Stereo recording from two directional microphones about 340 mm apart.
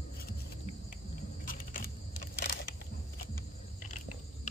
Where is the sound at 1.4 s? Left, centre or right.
Left.